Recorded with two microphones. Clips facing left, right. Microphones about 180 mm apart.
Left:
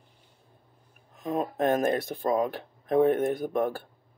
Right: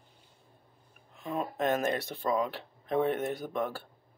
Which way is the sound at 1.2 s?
50° left (ahead or behind).